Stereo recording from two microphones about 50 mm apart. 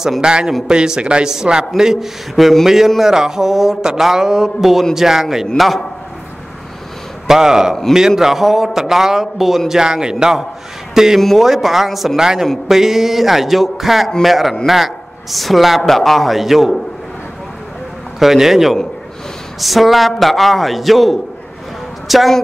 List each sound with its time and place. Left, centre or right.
0.2 s a man's voice: centre
7.2 s speech: centre
11.1 s a man's voice: centre
18.2 s a man's voice: centre